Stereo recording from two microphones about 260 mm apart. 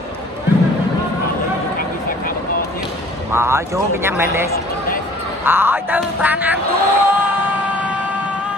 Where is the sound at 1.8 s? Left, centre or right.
Left.